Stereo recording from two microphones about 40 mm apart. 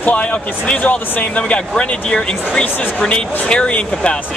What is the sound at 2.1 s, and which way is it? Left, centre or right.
Speech, centre.